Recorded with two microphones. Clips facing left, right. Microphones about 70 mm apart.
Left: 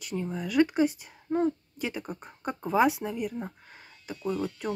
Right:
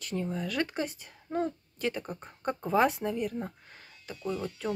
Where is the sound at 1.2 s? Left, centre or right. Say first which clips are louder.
Left 5 dB; centre.